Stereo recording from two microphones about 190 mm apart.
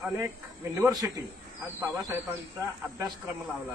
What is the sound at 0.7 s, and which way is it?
Speech, 15° right (ahead or behind).